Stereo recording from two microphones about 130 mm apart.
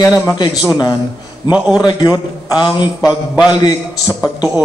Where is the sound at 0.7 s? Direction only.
30° left (ahead or behind).